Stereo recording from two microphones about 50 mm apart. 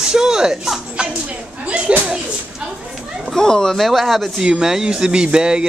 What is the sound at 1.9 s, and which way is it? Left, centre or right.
Speech, right.